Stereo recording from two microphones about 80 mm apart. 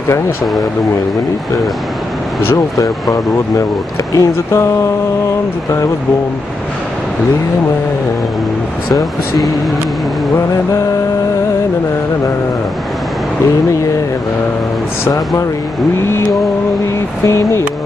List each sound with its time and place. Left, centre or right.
2.5 s speech: left
15.0 s speech: left
17.2 s speech: left